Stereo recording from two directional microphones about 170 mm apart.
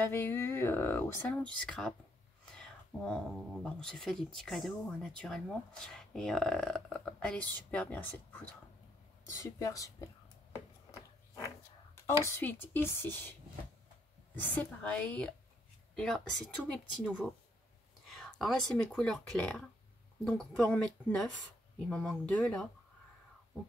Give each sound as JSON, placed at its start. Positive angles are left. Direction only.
{"t": 0.0, "sound": "speech", "side_deg": 15}
{"t": 2.5, "sound": "a sound", "side_deg": 5}
{"t": 3.6, "sound": "speech", "side_deg": 5}
{"t": 12.3, "sound": "speech", "side_deg": 10}
{"t": 14.5, "sound": "speech", "side_deg": 10}